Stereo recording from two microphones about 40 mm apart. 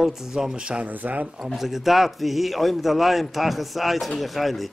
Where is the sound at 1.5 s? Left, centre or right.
Centre.